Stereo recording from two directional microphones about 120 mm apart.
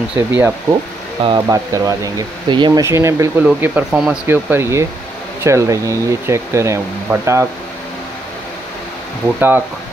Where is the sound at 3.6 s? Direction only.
10° right (ahead or behind).